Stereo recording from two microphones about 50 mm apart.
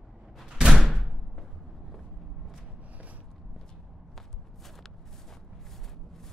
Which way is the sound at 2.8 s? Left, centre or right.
Right.